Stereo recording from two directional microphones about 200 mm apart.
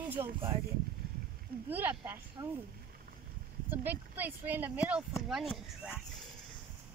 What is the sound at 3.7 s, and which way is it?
Speech, 10° right (ahead or behind).